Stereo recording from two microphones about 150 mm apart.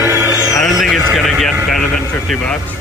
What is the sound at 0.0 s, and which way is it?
Music, 15° right (ahead or behind).